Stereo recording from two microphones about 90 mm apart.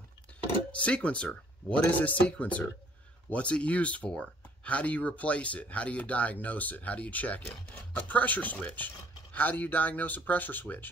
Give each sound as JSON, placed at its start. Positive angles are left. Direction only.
{"t": 0.7, "sound": "speech", "side_deg": 15}